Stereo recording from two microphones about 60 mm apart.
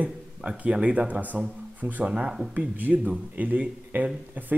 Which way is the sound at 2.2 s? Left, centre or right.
Centre.